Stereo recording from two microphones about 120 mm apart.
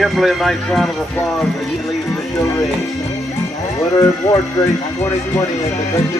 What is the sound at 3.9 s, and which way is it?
Speech, 30° left (ahead or behind).